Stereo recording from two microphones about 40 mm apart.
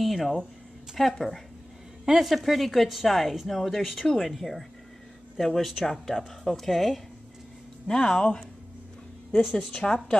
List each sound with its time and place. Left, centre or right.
0.0 s a woman's voice: centre
7.8 s a woman's voice: centre
9.4 s a woman's voice: centre
9.8 s a woman's voice: centre